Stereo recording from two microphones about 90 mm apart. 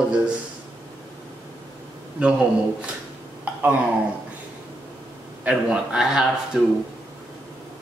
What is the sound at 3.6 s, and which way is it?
Speech, 20° right (ahead or behind).